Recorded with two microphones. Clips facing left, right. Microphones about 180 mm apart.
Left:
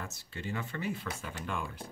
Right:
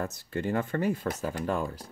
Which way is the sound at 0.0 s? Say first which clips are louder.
Right 10 dB; 45° right (ahead or behind).